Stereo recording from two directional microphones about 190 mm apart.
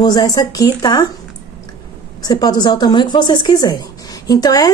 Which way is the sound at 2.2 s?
20° left (ahead or behind).